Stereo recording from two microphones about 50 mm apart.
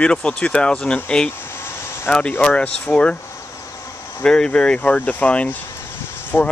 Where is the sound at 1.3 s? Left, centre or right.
Left.